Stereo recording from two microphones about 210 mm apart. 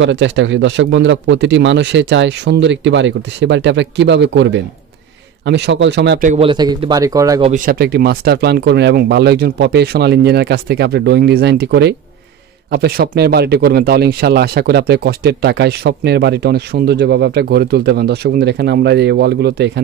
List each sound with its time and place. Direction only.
0.0 s a man's voice: 60° right (ahead or behind)
6.2 s speech: 30° right (ahead or behind)
6.5 s speech: 20° right (ahead or behind)
7.4 s speech: 40° right (ahead or behind)